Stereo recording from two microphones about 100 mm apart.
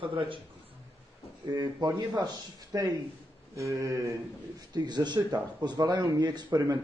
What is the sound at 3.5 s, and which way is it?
Speech, 30° right (ahead or behind).